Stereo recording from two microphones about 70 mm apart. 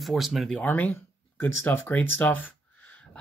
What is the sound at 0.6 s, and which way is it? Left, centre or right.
Speech, left.